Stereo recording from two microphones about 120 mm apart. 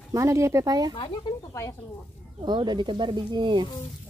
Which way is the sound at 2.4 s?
40° right (ahead or behind).